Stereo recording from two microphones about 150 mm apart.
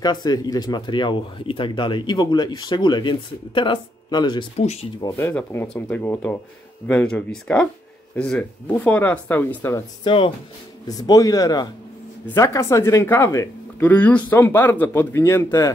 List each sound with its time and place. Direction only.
0.0 s speech: 30° left (ahead or behind)
5.0 s speech: 20° left (ahead or behind)
10.0 s speech: 35° left (ahead or behind); by 15.7 s 20° left (ahead or behind)